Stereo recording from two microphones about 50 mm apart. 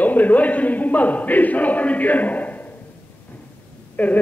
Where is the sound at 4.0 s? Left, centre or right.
Left.